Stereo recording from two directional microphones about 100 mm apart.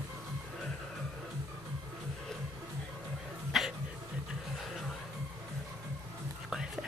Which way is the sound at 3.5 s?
Centre (ahead or behind).